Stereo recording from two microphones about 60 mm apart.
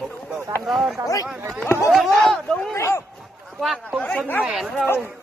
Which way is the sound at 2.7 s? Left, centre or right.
Left.